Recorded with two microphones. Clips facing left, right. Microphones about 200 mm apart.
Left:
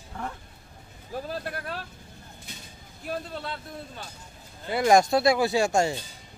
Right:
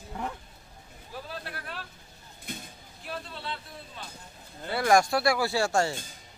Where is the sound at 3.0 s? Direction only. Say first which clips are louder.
Left 4 dB; 45° left (ahead or behind).